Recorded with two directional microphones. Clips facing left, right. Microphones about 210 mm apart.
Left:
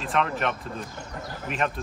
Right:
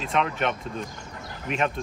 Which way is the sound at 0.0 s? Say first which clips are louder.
Right 1 dB; centre (ahead or behind).